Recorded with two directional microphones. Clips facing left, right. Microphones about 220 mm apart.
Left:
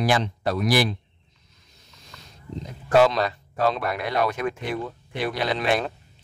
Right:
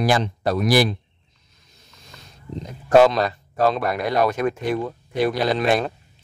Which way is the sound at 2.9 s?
40° right (ahead or behind).